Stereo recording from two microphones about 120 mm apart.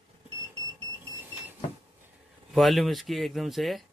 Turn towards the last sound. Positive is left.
turn(degrees=0)  # may be behind; listen again after turning